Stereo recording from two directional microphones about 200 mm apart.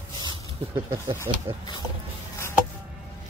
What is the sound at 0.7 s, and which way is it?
Speech, 15° right (ahead or behind).